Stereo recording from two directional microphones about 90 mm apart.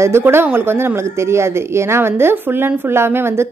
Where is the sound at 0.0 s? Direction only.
30° right (ahead or behind).